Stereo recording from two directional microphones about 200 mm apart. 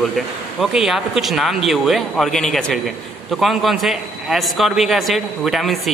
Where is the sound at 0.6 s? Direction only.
Centre (ahead or behind).